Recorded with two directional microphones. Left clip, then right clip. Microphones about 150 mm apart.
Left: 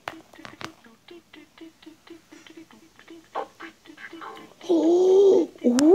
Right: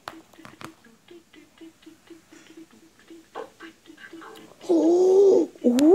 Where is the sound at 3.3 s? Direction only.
30° left (ahead or behind).